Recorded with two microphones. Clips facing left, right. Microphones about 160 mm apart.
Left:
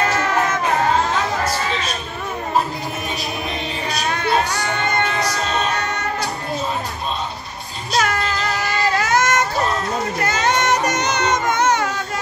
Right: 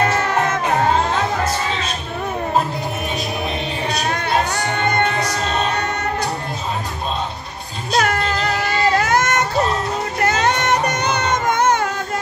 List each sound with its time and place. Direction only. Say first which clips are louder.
4.7 s music: right 3 dB; 55° right (ahead or behind)
7.9 s child singing: right 2 dB; 55° right (ahead or behind)
10.2 s music: right 2 dB; 60° right (ahead or behind)